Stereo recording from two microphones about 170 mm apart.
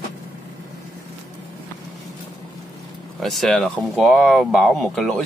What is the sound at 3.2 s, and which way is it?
Speech, centre (ahead or behind).